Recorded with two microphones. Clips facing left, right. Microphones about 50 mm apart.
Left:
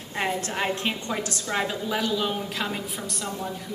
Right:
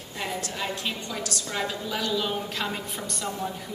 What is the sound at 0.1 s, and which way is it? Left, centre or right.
A woman's voice, left.